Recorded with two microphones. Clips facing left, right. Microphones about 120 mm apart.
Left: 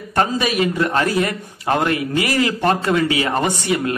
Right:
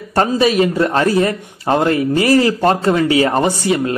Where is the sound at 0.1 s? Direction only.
30° right (ahead or behind).